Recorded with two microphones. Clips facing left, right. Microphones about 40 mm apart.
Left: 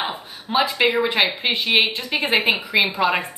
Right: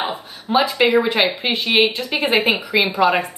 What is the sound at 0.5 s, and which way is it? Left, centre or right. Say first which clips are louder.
A woman's voice: right 3 dB; centre.